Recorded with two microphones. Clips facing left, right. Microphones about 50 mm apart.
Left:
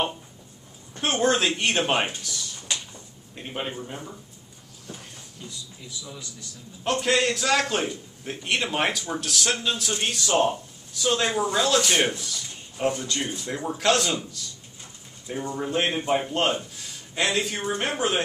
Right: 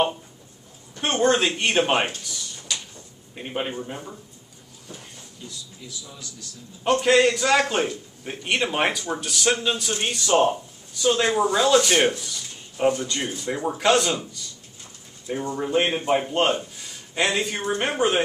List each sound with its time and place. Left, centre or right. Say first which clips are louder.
1.0 s speech: right 2 dB; centre
2.7 s a sound: even; left
3.3 s a man's voice: right 3 dB; centre
6.8 s a man's voice: right 5 dB; centre
11.6 s a man's voice: right 4 dB; centre
12.2 s a sound: even; centre
13.0 s a man's voice: right 2 dB; centre
15.5 s a man's voice: right 3 dB; centre